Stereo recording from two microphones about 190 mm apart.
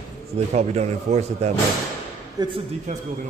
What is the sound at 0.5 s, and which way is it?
Speech, 35° right (ahead or behind).